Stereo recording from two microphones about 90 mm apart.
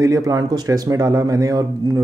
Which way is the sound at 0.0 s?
40° right (ahead or behind).